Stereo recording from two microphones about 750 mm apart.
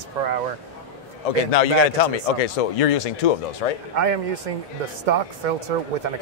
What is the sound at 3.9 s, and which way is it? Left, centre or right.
Speech, right.